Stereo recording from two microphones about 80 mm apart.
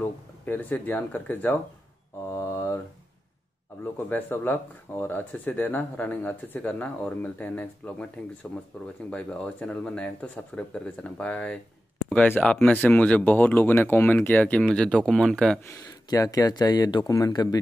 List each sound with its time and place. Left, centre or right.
0.0 s speech: left
2.3 s mantra: left
4.1 s speech: left
9.1 s speech: centre
16.1 s speech: left